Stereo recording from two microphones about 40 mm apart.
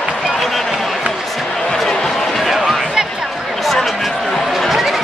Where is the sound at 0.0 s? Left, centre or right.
Centre.